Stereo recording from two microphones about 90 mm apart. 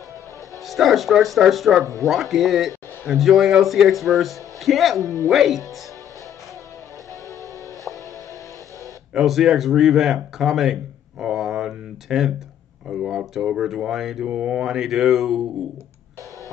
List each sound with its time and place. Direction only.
0.7 s speech: centre (ahead or behind)
9.1 s speech: centre (ahead or behind)